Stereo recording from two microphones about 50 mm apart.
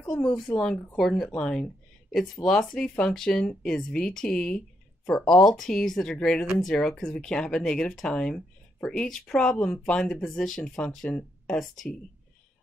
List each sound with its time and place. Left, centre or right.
0.1 s speech: centre
0.6 s speech: centre
11.1 s speech: centre
11.5 s speech: centre